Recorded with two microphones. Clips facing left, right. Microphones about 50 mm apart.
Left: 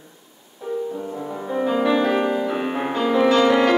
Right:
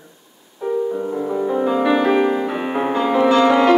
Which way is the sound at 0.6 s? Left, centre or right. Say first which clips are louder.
Right 6 dB; right.